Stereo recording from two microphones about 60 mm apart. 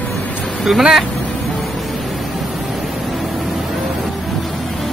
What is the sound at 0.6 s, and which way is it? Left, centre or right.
Speech, centre.